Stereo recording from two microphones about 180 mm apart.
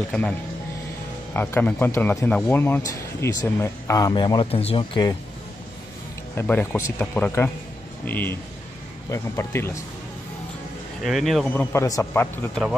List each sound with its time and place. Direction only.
1.3 s speech: 10° left (ahead or behind); by 5.1 s 30° left (ahead or behind)
6.3 s speech: 10° left (ahead or behind)
11.1 s speech: centre (ahead or behind)